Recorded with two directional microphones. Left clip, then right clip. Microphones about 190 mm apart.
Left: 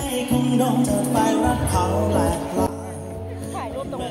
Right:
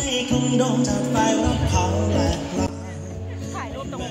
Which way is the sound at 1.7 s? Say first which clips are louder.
Left 2 dB; 15° right (ahead or behind).